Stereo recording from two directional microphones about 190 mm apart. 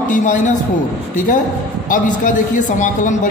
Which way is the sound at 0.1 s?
40° left (ahead or behind).